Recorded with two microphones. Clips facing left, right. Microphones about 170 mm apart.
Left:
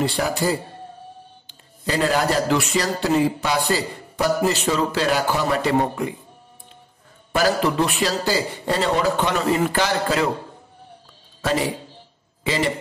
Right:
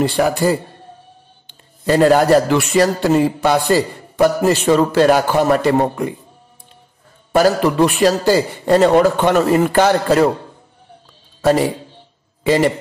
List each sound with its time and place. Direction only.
0.0 s a man's voice: 50° right (ahead or behind)
1.9 s a man's voice: 50° right (ahead or behind)
7.3 s a man's voice: 50° right (ahead or behind)
12.4 s a man's voice: 50° right (ahead or behind)